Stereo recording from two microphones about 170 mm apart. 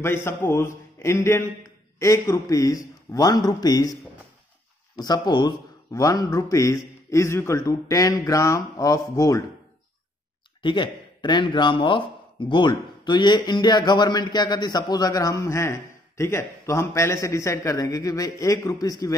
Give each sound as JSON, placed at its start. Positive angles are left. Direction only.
{"t": 0.0, "sound": "a man's voice", "side_deg": 15}
{"t": 4.9, "sound": "speech", "side_deg": 25}
{"t": 10.6, "sound": "speech", "side_deg": 30}